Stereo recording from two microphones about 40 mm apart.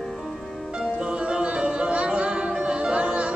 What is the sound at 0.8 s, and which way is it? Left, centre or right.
Music, right.